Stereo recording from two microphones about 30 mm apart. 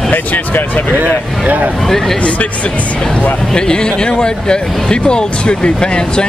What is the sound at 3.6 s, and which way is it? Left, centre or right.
Speech, left.